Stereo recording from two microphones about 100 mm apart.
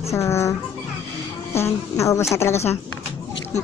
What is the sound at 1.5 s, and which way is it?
A woman's voice, 30° left (ahead or behind).